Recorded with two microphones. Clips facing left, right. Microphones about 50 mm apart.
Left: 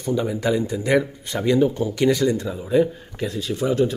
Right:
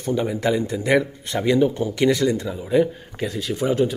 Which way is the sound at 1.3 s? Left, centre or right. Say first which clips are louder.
Even; right.